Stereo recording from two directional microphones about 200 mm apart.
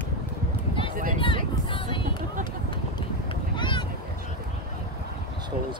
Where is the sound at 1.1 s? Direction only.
25° left (ahead or behind).